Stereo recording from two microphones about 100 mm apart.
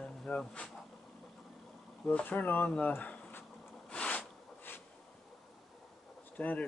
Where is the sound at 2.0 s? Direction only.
15° left (ahead or behind).